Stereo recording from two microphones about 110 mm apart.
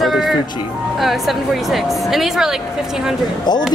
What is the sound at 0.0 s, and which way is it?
Music, centre (ahead or behind).